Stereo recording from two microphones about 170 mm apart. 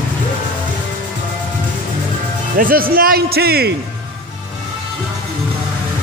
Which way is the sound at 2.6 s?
55° right (ahead or behind).